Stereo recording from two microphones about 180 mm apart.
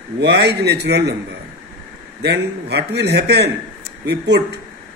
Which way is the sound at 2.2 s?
65° right (ahead or behind).